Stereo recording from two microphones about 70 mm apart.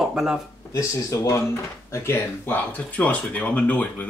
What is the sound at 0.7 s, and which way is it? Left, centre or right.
Speech, left.